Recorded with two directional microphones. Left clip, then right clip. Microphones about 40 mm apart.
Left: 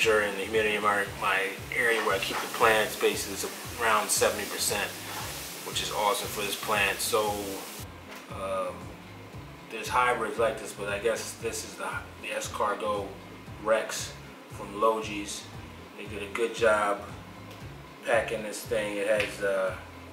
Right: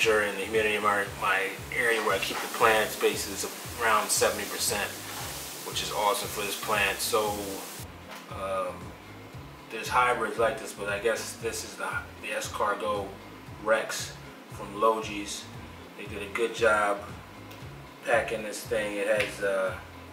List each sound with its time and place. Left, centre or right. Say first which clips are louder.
0.0 s speech: even; centre
8.4 s speech: even; centre
9.7 s speech: right 1 dB; centre
18.0 s speech: even; centre